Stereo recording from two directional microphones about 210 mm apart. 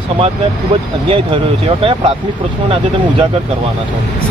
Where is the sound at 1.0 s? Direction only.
25° right (ahead or behind).